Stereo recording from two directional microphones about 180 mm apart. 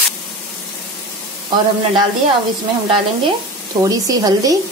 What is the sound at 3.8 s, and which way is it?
Speech, 20° right (ahead or behind).